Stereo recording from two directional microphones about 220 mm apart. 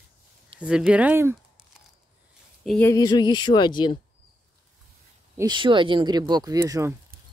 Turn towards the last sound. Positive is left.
turn(degrees=-15)  # may be behind; listen again after turning